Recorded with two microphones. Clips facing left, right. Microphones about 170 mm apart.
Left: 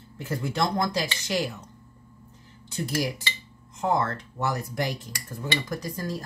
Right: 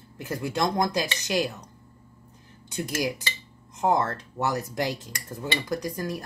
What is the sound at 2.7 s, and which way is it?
Dishes, 20° right (ahead or behind).